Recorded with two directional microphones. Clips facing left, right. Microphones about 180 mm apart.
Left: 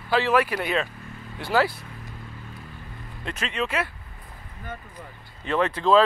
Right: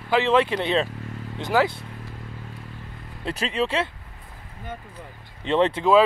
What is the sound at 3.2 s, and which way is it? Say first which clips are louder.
Speech: right 4 dB; 35° right (ahead or behind).